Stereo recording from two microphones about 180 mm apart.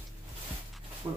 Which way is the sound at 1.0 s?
15° right (ahead or behind).